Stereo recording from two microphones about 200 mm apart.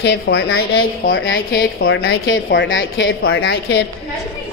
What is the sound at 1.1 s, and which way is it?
A woman's voice, 70° left (ahead or behind).